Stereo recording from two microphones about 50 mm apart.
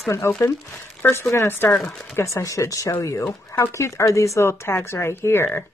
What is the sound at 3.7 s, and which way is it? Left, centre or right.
Speech, left.